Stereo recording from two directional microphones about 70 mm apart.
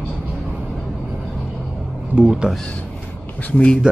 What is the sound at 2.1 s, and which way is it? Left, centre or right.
Speech, centre.